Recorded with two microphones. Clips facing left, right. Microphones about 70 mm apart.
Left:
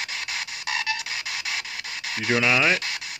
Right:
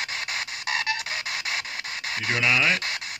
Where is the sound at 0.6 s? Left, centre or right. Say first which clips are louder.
Right 1 dB; right.